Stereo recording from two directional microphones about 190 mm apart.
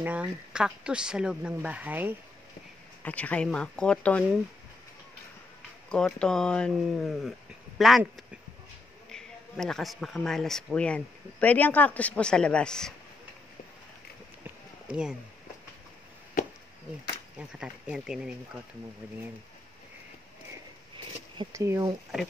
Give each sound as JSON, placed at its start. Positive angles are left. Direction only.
{"t": 0.0, "sound": "speech", "side_deg": -5}
{"t": 3.0, "sound": "speech", "side_deg": 5}
{"t": 5.9, "sound": "speech", "side_deg": 5}
{"t": 9.1, "sound": "speech", "side_deg": 5}
{"t": 14.9, "sound": "speech", "side_deg": -5}
{"t": 17.4, "sound": "speech", "side_deg": -5}
{"t": 21.4, "sound": "speech", "side_deg": -15}